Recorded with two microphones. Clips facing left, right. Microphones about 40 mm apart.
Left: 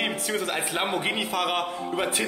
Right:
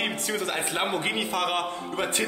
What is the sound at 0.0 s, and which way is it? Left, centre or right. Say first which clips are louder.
A man's voice: left 1 dB; centre.